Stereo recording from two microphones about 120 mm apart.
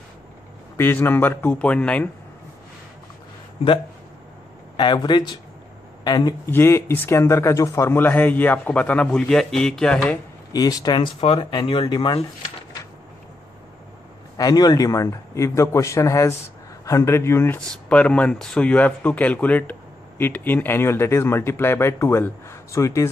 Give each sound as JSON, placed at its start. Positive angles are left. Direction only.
{"t": 0.7, "sound": "speech", "side_deg": 20}
{"t": 4.7, "sound": "speech", "side_deg": 40}
{"t": 6.4, "sound": "speech", "side_deg": 20}
{"t": 10.5, "sound": "speech", "side_deg": 30}
{"t": 11.1, "sound": "speech", "side_deg": 50}
{"t": 14.3, "sound": "speech", "side_deg": 30}
{"t": 17.6, "sound": "speech", "side_deg": 10}